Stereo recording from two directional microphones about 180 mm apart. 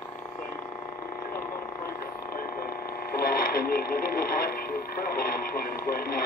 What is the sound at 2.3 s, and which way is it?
Speech, 55° left (ahead or behind).